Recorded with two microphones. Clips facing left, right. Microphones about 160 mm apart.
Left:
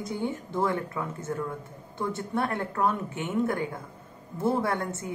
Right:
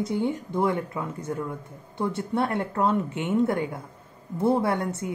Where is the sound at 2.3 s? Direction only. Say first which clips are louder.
Right 3 dB; 25° right (ahead or behind).